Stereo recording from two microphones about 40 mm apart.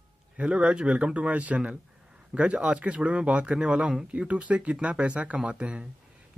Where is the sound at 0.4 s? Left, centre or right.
Right.